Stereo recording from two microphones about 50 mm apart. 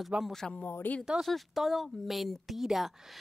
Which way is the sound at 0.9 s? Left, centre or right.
Left.